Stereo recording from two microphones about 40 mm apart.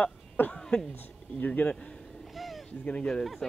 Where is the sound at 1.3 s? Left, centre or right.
Left.